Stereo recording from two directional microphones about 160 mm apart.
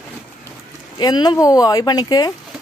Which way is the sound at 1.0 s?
25° left (ahead or behind).